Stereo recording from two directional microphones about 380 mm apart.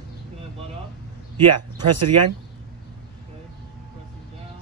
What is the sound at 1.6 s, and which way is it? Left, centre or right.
Speech, right.